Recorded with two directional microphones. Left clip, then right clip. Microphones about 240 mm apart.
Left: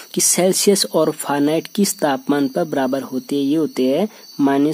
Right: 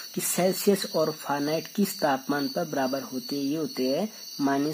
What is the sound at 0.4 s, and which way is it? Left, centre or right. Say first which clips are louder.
Speech: left 8 dB; left.